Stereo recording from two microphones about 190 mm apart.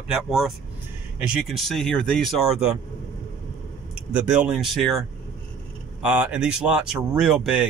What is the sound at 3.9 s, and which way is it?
Speech, 5° right (ahead or behind).